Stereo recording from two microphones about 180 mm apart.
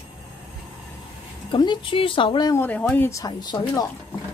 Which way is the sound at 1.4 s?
25° left (ahead or behind).